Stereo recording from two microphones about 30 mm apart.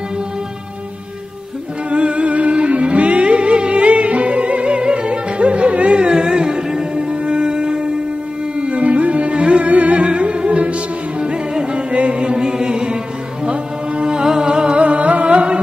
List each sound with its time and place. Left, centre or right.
1.9 s music: right
8.7 s music: right
9.7 s music: right
14.0 s music: right